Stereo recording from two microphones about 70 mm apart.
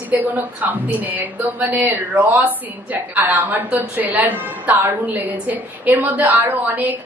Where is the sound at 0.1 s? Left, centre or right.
Right.